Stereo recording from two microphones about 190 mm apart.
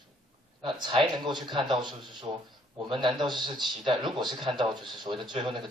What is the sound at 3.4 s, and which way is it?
A man's voice, 25° right (ahead or behind).